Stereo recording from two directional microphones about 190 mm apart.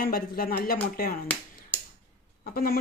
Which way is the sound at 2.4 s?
50° left (ahead or behind).